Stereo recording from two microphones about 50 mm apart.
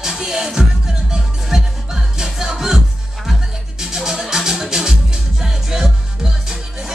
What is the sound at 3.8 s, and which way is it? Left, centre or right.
Music, centre.